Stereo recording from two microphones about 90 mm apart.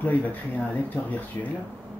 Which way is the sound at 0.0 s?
20° left (ahead or behind).